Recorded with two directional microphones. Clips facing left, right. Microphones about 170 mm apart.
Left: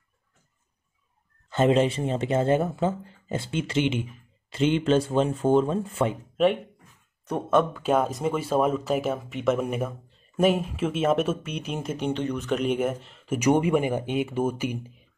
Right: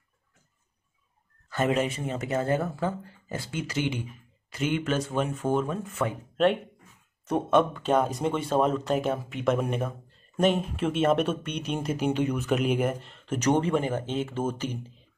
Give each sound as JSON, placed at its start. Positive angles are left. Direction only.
{"t": 1.5, "sound": "speech", "side_deg": 25}
{"t": 6.3, "sound": "speech", "side_deg": 0}